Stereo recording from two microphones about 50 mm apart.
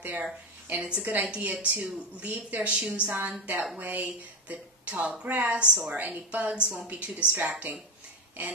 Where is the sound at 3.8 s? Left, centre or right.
Right.